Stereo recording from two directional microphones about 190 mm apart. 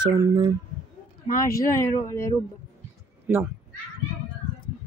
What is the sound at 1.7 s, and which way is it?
Speech, 15° left (ahead or behind).